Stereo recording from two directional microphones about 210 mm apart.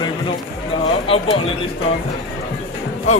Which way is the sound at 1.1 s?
25° left (ahead or behind).